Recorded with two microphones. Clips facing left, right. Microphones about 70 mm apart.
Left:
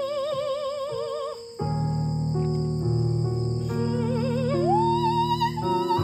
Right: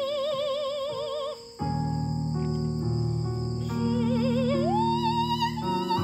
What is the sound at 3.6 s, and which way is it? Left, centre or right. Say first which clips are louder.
Music: right 2 dB; centre.